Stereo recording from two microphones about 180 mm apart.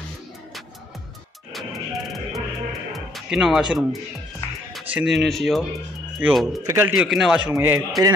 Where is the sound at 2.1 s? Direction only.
Centre (ahead or behind).